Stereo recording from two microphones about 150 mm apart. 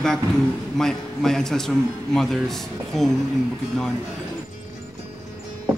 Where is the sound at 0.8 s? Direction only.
5° left (ahead or behind).